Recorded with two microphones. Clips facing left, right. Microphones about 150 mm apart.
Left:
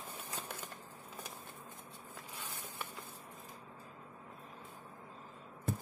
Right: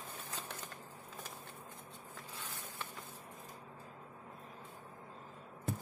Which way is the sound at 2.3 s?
15° left (ahead or behind).